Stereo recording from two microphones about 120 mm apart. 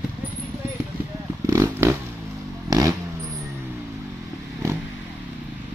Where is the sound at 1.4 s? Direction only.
25° right (ahead or behind).